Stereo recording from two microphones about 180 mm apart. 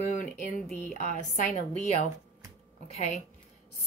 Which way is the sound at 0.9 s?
45° left (ahead or behind).